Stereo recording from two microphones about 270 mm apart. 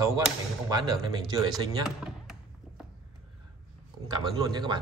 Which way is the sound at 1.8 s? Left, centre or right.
Centre.